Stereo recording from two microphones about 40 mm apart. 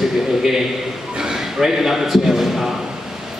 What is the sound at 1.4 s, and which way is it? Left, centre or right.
A man's voice, centre.